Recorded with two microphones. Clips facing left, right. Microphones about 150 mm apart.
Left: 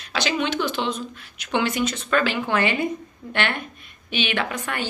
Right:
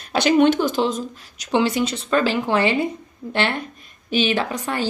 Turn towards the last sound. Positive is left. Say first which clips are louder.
# right 3 dB
turn(degrees=-35)  # may be behind; listen again after turning